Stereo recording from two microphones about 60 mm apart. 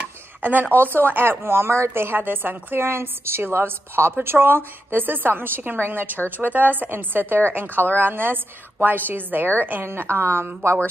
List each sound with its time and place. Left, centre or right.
0.4 s a woman's voice: right